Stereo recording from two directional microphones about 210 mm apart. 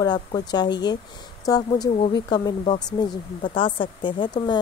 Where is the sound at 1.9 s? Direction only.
30° left (ahead or behind).